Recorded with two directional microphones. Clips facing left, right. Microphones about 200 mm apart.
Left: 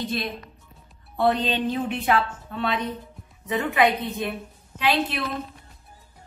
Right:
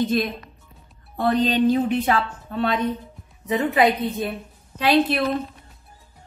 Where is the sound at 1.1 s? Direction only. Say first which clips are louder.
Right 2 dB; 45° right (ahead or behind).